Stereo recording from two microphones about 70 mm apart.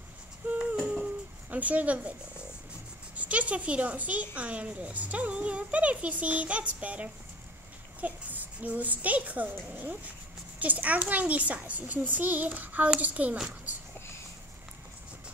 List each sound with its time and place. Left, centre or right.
0.4 s a sound: right
1.5 s a child's voice: right
3.2 s a woman's voice: centre